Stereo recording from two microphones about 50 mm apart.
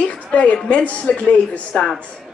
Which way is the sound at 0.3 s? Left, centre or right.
Left.